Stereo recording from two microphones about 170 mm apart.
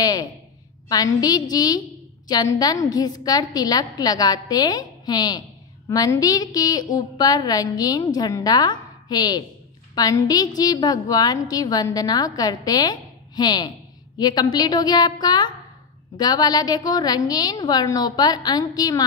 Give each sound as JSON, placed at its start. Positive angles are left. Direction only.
{"t": 0.0, "sound": "a woman's voice", "side_deg": 20}